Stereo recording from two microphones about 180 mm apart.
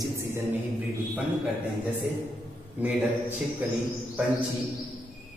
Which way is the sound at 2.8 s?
10° right (ahead or behind).